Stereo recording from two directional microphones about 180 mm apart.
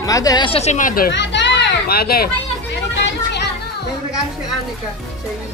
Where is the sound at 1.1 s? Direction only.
75° left (ahead or behind); by 2.3 s 60° left (ahead or behind).